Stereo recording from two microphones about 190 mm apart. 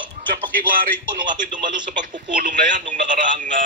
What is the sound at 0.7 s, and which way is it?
Speech, 45° right (ahead or behind).